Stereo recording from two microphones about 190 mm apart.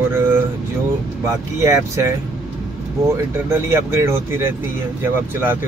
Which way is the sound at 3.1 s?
15° right (ahead or behind).